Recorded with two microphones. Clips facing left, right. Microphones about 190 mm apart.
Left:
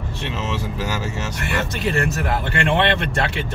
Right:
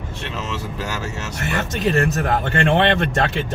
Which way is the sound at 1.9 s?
45° right (ahead or behind).